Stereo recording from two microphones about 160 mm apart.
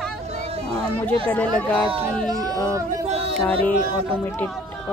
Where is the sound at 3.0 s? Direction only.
40° right (ahead or behind).